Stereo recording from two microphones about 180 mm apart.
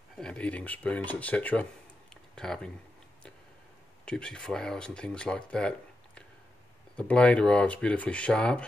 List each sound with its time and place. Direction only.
0.2 s speech: 5° left (ahead or behind)
4.0 s speech: 5° left (ahead or behind)